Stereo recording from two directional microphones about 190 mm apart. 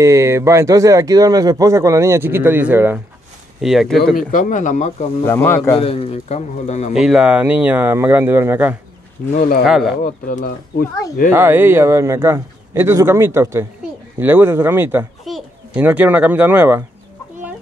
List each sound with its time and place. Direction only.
0.0 s speech: 15° right (ahead or behind); by 4.2 s centre (ahead or behind)
4.2 s a man's voice: 45° left (ahead or behind)
5.2 s speech: 10° left (ahead or behind)
5.8 s a man's voice: 30° left (ahead or behind)
7.0 s speech: 5° right (ahead or behind)
9.3 s speech: 50° left (ahead or behind)
9.7 s speech: centre (ahead or behind)
10.0 s speech: 45° left (ahead or behind)
11.3 s a child's voice: 10° right (ahead or behind)